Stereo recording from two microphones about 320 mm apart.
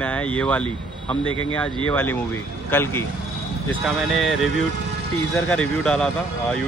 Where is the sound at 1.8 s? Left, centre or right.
Centre.